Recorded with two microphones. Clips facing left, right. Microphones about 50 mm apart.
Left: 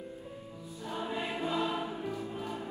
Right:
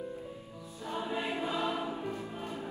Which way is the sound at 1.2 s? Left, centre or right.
Right.